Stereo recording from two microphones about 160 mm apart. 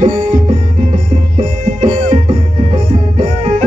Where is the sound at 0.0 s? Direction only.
50° right (ahead or behind).